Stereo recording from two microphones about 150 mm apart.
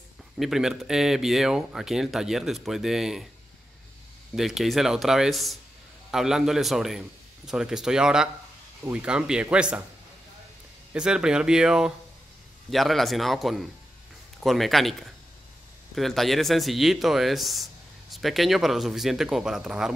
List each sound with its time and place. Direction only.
0.4 s speech: 5° right (ahead or behind)
4.4 s speech: centre (ahead or behind)
10.9 s speech: 5° right (ahead or behind)